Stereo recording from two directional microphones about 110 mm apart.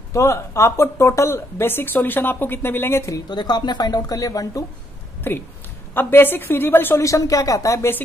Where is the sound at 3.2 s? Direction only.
40° left (ahead or behind).